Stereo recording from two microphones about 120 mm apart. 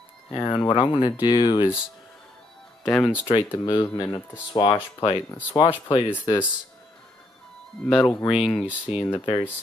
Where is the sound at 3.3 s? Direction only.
45° left (ahead or behind).